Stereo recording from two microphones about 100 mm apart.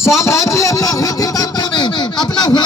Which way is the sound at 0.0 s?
30° left (ahead or behind).